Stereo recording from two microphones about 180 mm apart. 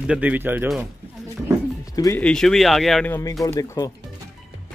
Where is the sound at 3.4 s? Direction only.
20° left (ahead or behind).